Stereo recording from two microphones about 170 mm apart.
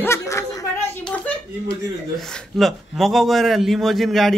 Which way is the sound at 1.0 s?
10° left (ahead or behind).